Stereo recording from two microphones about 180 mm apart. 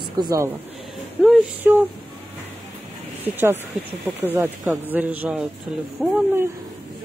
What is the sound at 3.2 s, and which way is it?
A man's voice, 10° right (ahead or behind).